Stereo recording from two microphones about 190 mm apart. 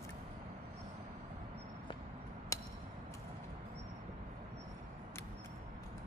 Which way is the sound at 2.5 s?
15° left (ahead or behind).